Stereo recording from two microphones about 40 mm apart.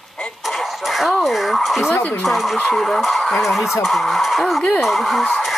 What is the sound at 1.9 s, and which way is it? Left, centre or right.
Speech, left.